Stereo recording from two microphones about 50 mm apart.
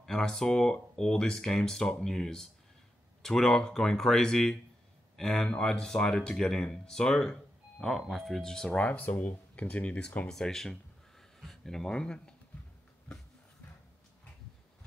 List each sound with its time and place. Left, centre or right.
0.0 s speech: centre
8.7 s speech: left
9.0 s speech: left
10.2 s speech: centre